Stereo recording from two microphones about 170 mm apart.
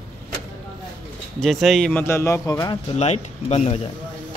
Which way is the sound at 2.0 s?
15° left (ahead or behind).